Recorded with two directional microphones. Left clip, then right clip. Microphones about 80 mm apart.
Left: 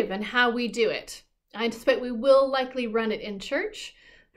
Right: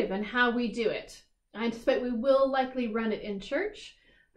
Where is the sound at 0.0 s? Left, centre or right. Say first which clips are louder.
Left 4 dB; centre.